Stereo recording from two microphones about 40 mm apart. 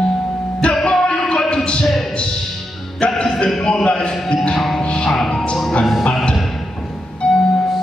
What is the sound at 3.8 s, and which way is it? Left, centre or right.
Speech, left.